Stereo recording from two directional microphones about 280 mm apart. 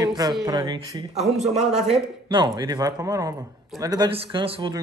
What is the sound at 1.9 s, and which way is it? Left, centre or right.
Speech, centre.